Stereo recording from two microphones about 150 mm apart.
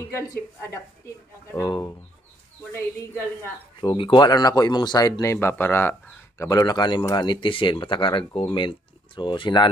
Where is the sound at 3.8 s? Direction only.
35° left (ahead or behind).